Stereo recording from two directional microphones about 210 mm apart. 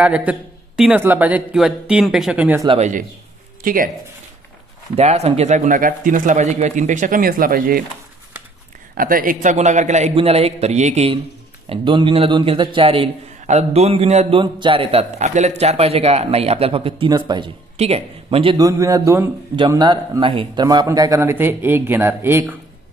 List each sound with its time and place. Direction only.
0.0 s a man's voice: 5° right (ahead or behind)
2.7 s speech: 35° right (ahead or behind)
4.9 s speech: 30° right (ahead or behind)
8.9 s a man's voice: 40° right (ahead or behind); by 22.6 s 10° right (ahead or behind)